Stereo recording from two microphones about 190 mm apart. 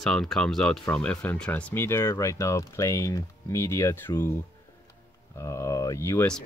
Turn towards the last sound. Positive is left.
turn(degrees=10)  # may be behind; listen again after turning